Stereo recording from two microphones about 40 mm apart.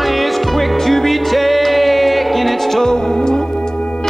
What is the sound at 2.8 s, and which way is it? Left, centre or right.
Music, centre.